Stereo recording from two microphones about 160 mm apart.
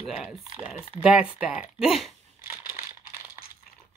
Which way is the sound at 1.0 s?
5° right (ahead or behind).